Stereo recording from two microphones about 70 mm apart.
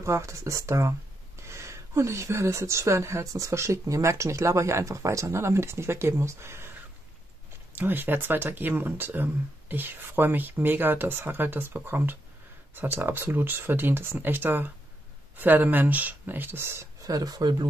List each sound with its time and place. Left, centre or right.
0.0 s speech: right
7.7 s speech: right
17.0 s speech: right